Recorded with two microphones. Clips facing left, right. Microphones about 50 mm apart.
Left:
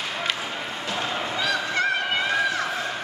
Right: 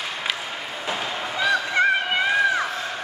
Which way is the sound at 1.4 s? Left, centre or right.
Centre.